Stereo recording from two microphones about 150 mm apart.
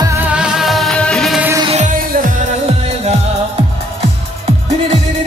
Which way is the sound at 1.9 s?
70° right (ahead or behind).